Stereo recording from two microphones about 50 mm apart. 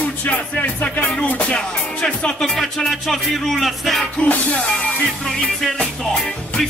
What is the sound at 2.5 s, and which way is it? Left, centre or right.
Music, centre.